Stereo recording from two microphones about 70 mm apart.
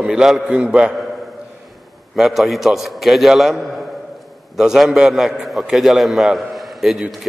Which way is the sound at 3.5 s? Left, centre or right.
Centre.